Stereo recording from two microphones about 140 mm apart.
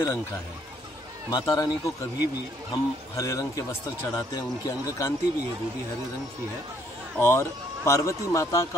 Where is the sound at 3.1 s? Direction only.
25° left (ahead or behind).